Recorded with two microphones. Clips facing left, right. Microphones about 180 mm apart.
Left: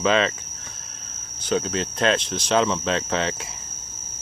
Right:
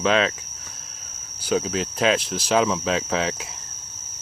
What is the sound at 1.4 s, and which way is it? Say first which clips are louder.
Speech: right 1 dB; 5° right (ahead or behind).